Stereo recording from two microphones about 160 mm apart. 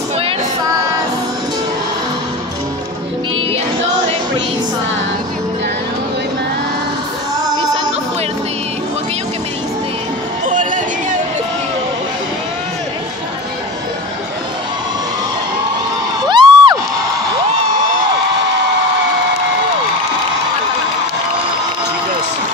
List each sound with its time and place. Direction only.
7.5 s music: 25° right (ahead or behind)
10.4 s music: 55° right (ahead or behind)
16.3 s crowd: 30° right (ahead or behind)